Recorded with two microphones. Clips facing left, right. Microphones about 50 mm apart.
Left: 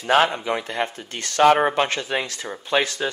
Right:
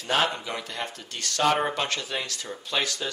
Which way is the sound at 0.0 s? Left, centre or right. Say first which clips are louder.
Left 7 dB; left.